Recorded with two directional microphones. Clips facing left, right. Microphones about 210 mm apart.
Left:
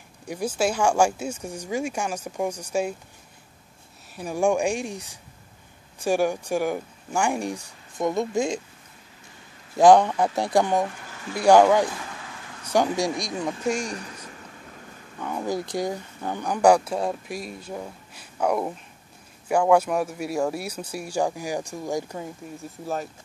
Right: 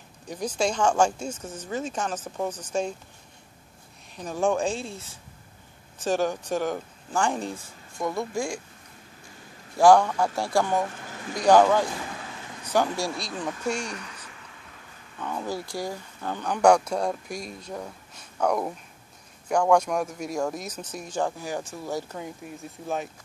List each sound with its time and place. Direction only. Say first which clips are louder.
0.3 s speech: left 2 dB; 10° left (ahead or behind)
4.1 s speech: left 2 dB; 10° left (ahead or behind)
9.8 s a man's voice: left 2 dB; 20° left (ahead or behind)
13.9 s a sound: left 4 dB; 35° left (ahead or behind)
15.1 s speech: left 3 dB; 10° left (ahead or behind)
22.2 s speech: left 1 dB; centre (ahead or behind)